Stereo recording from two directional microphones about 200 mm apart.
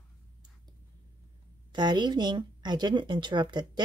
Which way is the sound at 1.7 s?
20° right (ahead or behind).